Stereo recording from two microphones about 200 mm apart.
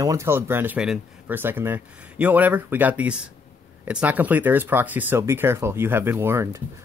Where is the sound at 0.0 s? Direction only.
15° right (ahead or behind).